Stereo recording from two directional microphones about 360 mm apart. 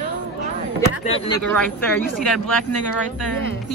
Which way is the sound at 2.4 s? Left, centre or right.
Left.